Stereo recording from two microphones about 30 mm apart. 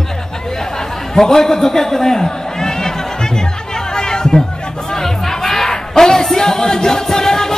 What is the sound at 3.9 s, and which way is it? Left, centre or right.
Chatter, left.